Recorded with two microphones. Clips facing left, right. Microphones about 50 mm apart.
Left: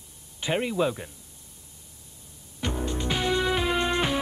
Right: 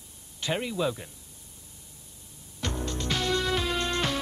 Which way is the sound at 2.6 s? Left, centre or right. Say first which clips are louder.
Left 3 dB; centre.